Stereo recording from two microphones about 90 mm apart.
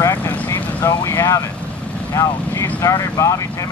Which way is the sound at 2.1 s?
35° left (ahead or behind).